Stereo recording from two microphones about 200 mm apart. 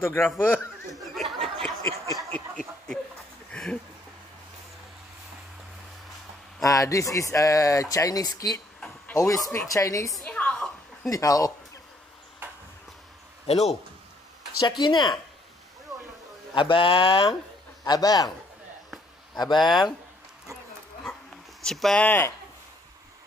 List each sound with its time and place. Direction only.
0.0 s speech: 10° left (ahead or behind)
1.1 s a sound: centre (ahead or behind)
1.8 s a sound: 15° left (ahead or behind)
6.6 s speech: 15° left (ahead or behind)
10.1 s a sound: 5° left (ahead or behind)
11.1 s speech: 15° left (ahead or behind)
13.5 s a man's voice: 30° left (ahead or behind)
14.6 s speech: 20° left (ahead or behind)
16.5 s speech: 25° left (ahead or behind)
19.3 s speech: 20° left (ahead or behind)
21.6 s speech: centre (ahead or behind)